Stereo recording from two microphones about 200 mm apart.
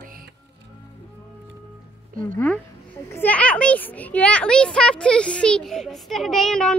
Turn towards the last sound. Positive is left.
turn(degrees=5)  # may be behind; listen again after turning